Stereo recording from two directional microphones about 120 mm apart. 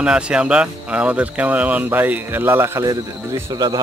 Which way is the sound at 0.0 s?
10° right (ahead or behind).